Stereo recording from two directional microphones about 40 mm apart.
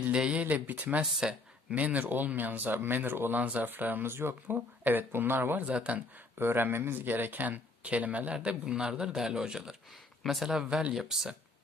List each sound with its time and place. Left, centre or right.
0.1 s speech: right
0.4 s speech: right
3.3 s speech: right
3.6 s speech: right
4.1 s speech: right
5.8 s speech: right
6.3 s speech: right
8.3 s a man's voice: right
9.1 s speech: centre
10.7 s a man's voice: right